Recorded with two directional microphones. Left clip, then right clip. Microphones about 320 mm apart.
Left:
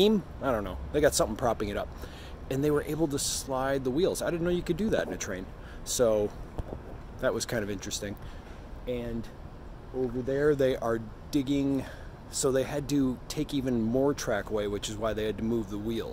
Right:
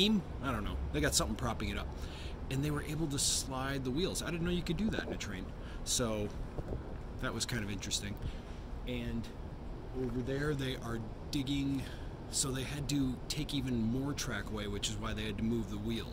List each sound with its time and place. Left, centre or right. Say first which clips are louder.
0.0 s speech: left 8 dB; centre
10.2 s speech: left 15 dB; centre